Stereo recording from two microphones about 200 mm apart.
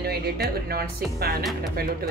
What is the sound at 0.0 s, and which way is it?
Speech, 50° right (ahead or behind).